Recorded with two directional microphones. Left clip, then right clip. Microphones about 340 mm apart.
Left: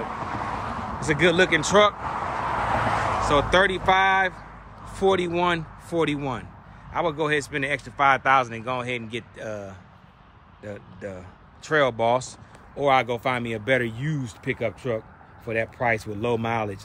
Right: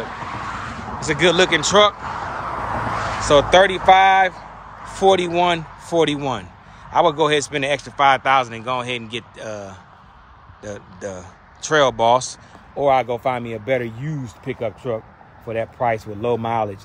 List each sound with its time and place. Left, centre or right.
0.0 s a sound: centre
0.9 s speech: centre
2.0 s vehicle: left
3.3 s speech: centre